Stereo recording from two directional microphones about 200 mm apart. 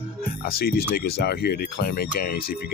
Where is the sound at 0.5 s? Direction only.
50° left (ahead or behind).